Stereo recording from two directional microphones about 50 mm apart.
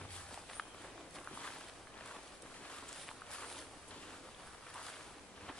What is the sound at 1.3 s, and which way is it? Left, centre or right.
Walk, centre.